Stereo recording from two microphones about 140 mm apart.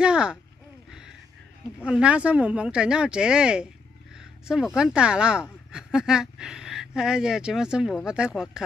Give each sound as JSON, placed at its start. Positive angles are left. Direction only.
{"t": 0.0, "sound": "speech", "side_deg": -5}
{"t": 0.8, "sound": "a sound", "side_deg": -5}
{"t": 1.9, "sound": "speech", "side_deg": -5}